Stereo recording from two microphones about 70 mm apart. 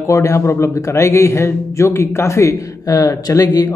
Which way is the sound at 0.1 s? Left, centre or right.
Left.